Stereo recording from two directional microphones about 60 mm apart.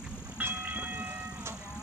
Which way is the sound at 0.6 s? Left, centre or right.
Centre.